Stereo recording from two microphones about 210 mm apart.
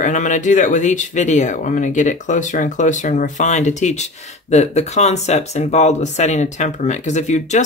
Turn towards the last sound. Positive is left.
turn(degrees=35)  # may be behind; listen again after turning